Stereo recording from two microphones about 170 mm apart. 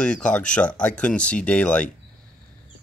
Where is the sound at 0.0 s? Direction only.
5° left (ahead or behind).